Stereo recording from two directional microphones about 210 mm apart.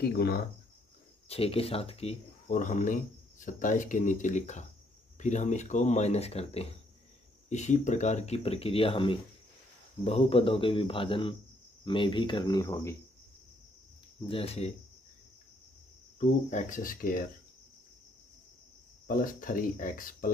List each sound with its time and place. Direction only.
0.0 s speech: 50° left (ahead or behind)
1.3 s speech: 30° left (ahead or behind)
14.2 s speech: 25° left (ahead or behind)
16.2 s speech: 35° left (ahead or behind)
19.0 s speech: 40° left (ahead or behind)